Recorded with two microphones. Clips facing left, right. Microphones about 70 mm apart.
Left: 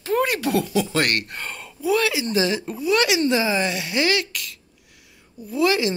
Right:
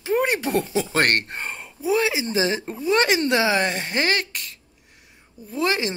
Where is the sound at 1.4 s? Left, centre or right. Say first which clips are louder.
Right 1 dB; right.